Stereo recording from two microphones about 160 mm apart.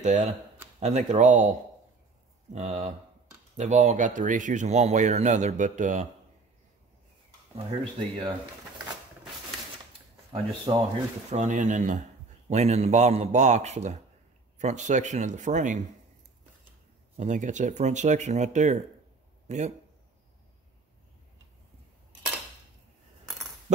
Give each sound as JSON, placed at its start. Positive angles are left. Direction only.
{"t": 0.7, "sound": "speech", "side_deg": -45}
{"t": 7.5, "sound": "speech", "side_deg": -30}
{"t": 10.3, "sound": "speech", "side_deg": -35}
{"t": 11.2, "sound": "speech", "side_deg": -45}
{"t": 17.2, "sound": "speech", "side_deg": -50}